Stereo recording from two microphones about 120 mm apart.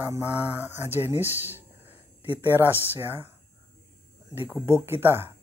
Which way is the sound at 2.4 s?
15° right (ahead or behind).